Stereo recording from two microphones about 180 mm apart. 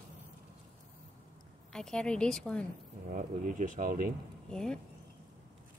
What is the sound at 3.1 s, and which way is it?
Speech, 45° right (ahead or behind).